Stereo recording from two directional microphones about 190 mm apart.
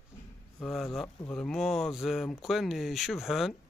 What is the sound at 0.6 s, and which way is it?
Speech, centre (ahead or behind).